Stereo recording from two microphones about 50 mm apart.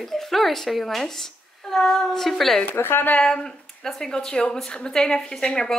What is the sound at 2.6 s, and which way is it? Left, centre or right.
Speech, left.